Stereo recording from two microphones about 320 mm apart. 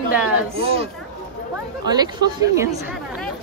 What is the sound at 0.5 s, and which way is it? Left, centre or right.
Speech, centre.